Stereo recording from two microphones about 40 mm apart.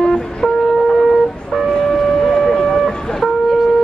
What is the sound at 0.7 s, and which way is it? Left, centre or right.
Shofar, centre.